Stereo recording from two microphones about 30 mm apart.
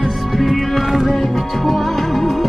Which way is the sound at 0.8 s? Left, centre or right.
Centre.